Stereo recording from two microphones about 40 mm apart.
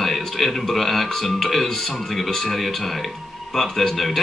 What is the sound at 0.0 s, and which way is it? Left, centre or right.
Speech, centre.